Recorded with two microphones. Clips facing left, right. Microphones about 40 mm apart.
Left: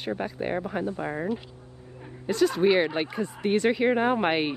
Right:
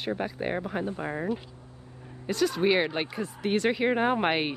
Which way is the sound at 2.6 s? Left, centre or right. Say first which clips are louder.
Left 2 dB; centre.